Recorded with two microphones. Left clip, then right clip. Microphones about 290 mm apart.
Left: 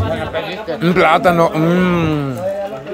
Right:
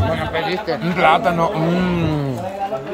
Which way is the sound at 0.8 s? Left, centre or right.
Centre.